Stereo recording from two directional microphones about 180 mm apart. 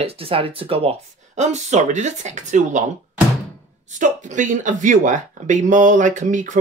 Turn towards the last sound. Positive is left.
turn(degrees=-45)  # may be behind; listen again after turning